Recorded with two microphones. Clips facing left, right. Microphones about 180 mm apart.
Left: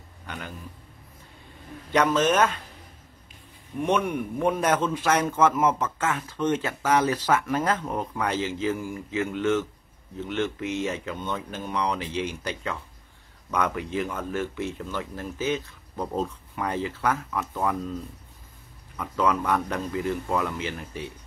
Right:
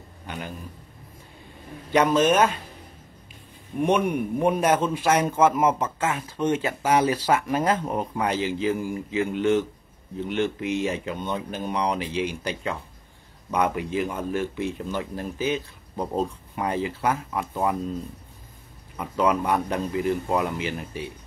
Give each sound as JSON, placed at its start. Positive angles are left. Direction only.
{"t": 1.9, "sound": "speech", "side_deg": -10}
{"t": 3.8, "sound": "speech", "side_deg": -10}
{"t": 17.3, "sound": "speech", "side_deg": -25}
{"t": 18.9, "sound": "speech", "side_deg": -15}